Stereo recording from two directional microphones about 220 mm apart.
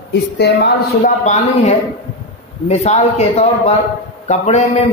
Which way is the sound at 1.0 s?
30° left (ahead or behind).